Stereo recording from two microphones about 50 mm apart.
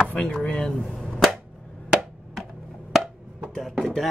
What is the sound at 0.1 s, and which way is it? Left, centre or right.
Speech, centre.